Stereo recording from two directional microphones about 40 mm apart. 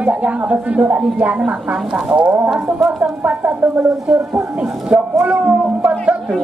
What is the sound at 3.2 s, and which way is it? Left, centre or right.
Speech, right.